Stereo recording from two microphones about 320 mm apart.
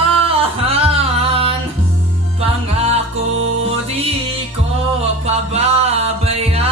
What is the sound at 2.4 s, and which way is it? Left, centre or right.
Music, centre.